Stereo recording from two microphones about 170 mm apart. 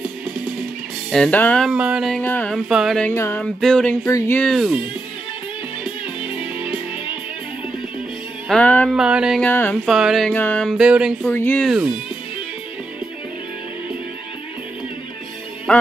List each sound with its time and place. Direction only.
1.1 s speech: 5° left (ahead or behind)
2.2 s a sound: 10° left (ahead or behind)
2.5 s speech: centre (ahead or behind)
3.1 s a sound: 15° left (ahead or behind)
3.4 s speech: 5° left (ahead or behind)
8.5 s speech: 5° left (ahead or behind)
8.9 s speech: 5° right (ahead or behind)
9.4 s a sound: 10° left (ahead or behind)
9.8 s speech: centre (ahead or behind)
10.3 s speech: 10° left (ahead or behind)
11.2 s a sound: 10° left (ahead or behind)
11.6 s speech: 5° right (ahead or behind)